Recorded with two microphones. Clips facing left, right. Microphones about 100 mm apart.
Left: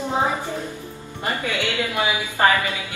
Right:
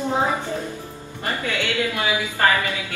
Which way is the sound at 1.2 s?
20° left (ahead or behind).